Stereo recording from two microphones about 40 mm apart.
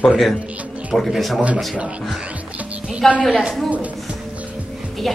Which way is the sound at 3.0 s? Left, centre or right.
Centre.